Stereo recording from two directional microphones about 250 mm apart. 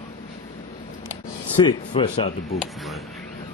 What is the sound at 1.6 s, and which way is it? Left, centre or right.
Speech, centre.